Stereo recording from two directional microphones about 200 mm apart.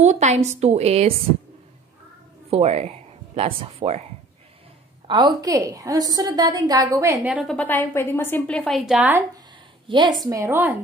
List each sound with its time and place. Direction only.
0.0 s a woman's voice: 35° right (ahead or behind)
2.5 s speech: 30° right (ahead or behind)
5.0 s a woman's voice: 25° right (ahead or behind)
7.3 s a woman's voice: 5° left (ahead or behind)
9.8 s a woman's voice: 20° right (ahead or behind)